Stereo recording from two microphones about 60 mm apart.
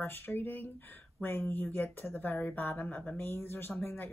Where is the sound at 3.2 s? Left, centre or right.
Left.